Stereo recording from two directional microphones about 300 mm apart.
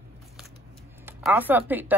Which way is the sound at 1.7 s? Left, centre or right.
Centre.